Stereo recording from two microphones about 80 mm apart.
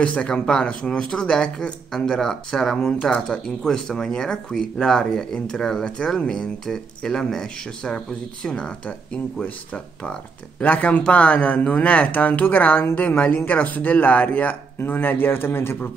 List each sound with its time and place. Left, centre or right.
0.0 s speech: centre